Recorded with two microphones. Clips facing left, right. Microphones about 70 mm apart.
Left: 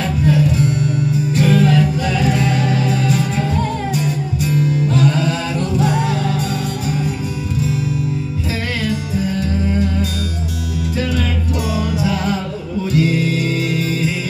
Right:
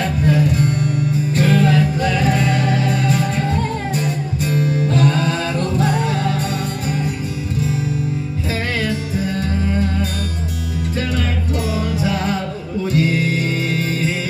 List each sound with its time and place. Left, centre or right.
1.3 s music: right
4.5 s music: right
11.5 s music: right